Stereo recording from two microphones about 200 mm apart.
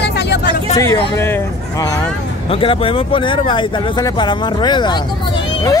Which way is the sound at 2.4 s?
25° left (ahead or behind).